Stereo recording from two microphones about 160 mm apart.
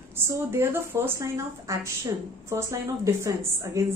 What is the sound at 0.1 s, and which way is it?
A woman's voice, 15° right (ahead or behind).